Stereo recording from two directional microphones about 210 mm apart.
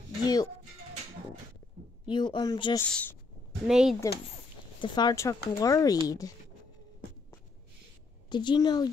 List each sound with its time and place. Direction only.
0.2 s music: 20° left (ahead or behind)
2.0 s speech: 20° left (ahead or behind)
2.9 s speech: 5° left (ahead or behind)
4.7 s speech: 20° left (ahead or behind)
8.3 s speech: 20° left (ahead or behind)